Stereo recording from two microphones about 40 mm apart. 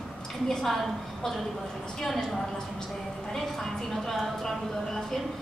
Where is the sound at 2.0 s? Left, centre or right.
Centre.